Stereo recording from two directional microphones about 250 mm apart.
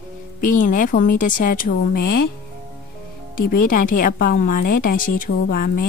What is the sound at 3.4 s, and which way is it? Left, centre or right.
A woman's voice, left.